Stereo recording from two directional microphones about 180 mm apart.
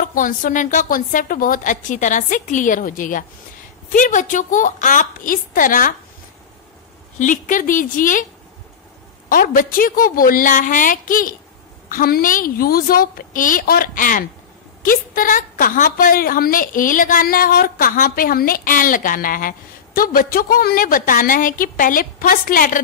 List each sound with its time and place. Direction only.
0.0 s a woman's voice: 50° left (ahead or behind)
7.2 s a woman's voice: 45° left (ahead or behind)
9.3 s a woman's voice: 50° left (ahead or behind)